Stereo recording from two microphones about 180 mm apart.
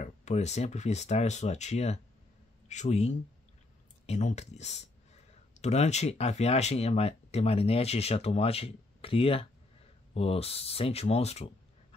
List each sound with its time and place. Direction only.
0.0 s speech: 40° left (ahead or behind)